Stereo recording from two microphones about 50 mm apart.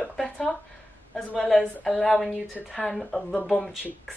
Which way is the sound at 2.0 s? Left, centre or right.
Centre.